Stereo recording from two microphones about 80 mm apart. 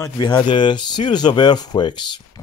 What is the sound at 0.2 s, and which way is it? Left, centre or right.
Speech, left.